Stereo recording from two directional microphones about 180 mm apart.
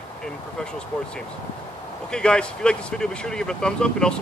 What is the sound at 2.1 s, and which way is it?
Speech, 5° left (ahead or behind).